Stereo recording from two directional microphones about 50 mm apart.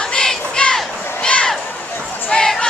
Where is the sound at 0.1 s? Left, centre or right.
Centre.